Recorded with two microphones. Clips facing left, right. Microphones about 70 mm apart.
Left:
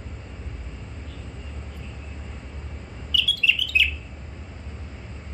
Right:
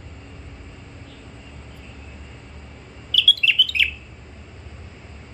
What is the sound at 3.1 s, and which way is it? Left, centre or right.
Bird, right.